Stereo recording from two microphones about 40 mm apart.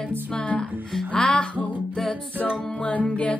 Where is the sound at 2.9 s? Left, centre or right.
Left.